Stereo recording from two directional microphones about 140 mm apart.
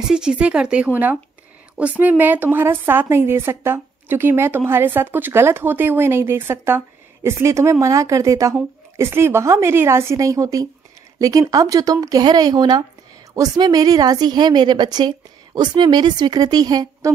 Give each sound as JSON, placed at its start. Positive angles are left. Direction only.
{"t": 0.1, "sound": "a woman's voice", "side_deg": -5}